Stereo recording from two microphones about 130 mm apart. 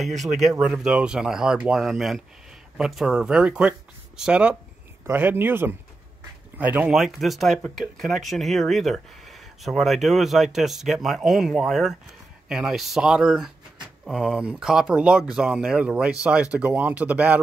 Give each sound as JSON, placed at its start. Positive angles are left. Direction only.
{"t": 0.2, "sound": "speech", "side_deg": 0}